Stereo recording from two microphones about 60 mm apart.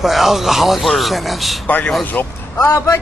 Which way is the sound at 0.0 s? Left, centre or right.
Centre.